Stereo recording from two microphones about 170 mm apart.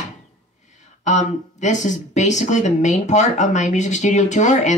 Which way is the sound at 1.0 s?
45° left (ahead or behind).